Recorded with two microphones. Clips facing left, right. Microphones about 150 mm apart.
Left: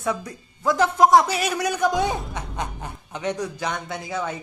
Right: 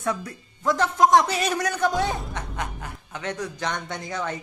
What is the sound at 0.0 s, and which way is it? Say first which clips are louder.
A man's voice: left 1 dB; 15° left (ahead or behind).